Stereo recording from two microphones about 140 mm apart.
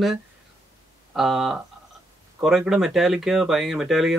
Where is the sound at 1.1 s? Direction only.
Centre (ahead or behind).